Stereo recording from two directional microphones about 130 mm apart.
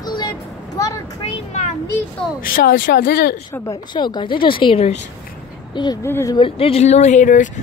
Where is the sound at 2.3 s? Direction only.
90° left.